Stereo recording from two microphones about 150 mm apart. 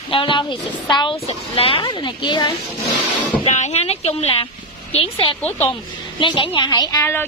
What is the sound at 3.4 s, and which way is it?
A woman's voice, 45° left (ahead or behind).